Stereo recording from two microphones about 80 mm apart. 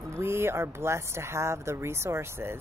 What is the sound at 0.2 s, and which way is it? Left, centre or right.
Speech, right.